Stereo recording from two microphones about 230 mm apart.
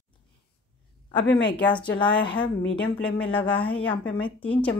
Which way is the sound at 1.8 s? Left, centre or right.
Centre.